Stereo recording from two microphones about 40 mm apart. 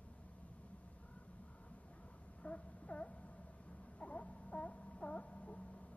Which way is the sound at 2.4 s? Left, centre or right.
Left.